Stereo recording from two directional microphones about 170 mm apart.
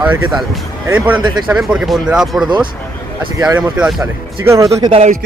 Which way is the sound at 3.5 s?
5° right (ahead or behind).